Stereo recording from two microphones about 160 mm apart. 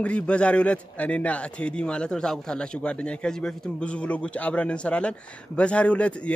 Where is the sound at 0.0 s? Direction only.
5° left (ahead or behind).